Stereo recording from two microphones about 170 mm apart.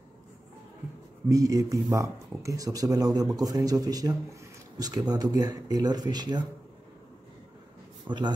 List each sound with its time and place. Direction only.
1.3 s speech: 20° right (ahead or behind)
8.1 s speech: 25° right (ahead or behind)